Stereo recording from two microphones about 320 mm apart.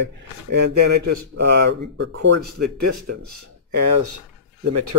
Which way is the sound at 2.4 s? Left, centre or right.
Right.